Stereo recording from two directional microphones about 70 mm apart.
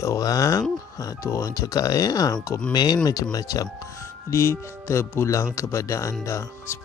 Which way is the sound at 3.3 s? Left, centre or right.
Left.